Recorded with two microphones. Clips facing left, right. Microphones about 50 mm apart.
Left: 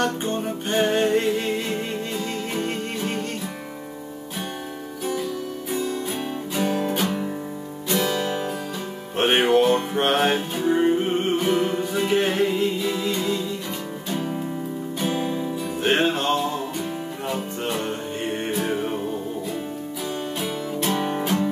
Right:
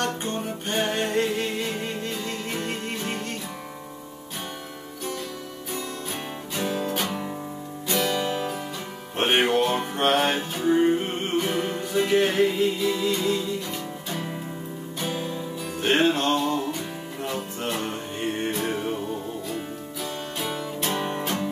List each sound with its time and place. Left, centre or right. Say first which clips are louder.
0.0 s music: left 4 dB; centre
2.5 s music: left 3 dB; centre
5.7 s music: left 6 dB; centre
8.3 s music: left 2 dB; centre
15.0 s music: left 4 dB; centre
18.5 s music: left 2 dB; centre
20.3 s music: left 3 dB; centre